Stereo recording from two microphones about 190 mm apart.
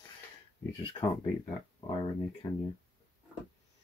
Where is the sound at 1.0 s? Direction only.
25° left (ahead or behind).